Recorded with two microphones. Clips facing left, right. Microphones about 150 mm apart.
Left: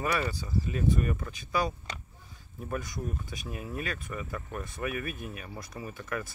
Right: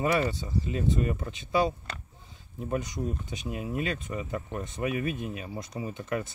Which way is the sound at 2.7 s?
20° right (ahead or behind).